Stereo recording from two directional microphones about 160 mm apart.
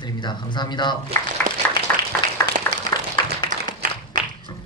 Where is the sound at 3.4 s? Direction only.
55° right (ahead or behind).